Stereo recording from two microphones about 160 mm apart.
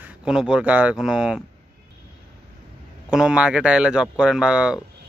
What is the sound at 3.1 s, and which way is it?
Speech, 5° right (ahead or behind).